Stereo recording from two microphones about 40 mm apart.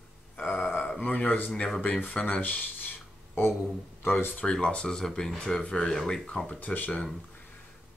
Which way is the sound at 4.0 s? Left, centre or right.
Left.